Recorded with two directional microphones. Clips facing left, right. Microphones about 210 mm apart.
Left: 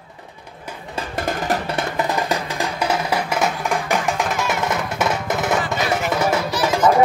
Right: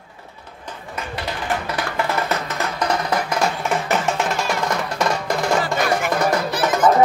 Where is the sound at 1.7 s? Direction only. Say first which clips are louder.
Left 1 dB; 20° left (ahead or behind).